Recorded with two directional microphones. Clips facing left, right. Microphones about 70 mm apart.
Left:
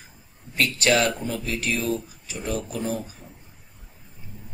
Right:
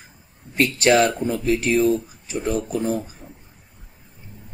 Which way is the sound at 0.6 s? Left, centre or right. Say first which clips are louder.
Right 5 dB; right.